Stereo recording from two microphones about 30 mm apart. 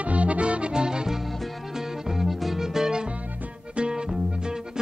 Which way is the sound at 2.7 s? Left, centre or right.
Right.